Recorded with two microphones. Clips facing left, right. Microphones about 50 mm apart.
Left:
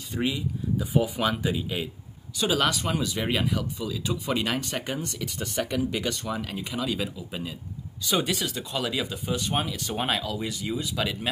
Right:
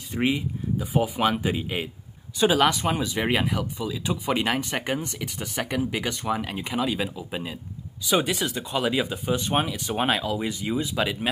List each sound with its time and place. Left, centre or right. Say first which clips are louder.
0.1 s speech: right 3 dB; right
5.4 s speech: even; centre
8.1 s speech: right 3 dB; centre